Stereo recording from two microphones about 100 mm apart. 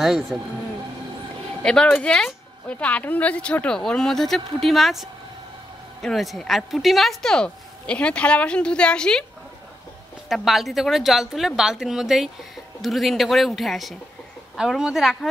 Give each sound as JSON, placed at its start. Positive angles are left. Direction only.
{"t": 0.0, "sound": "a woman's voice", "side_deg": 0}
{"t": 1.6, "sound": "speech", "side_deg": 10}
{"t": 10.2, "sound": "a woman's voice", "side_deg": 0}